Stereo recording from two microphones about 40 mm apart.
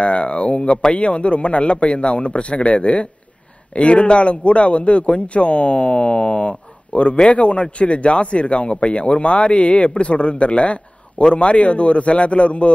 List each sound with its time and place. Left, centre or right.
0.0 s speech: left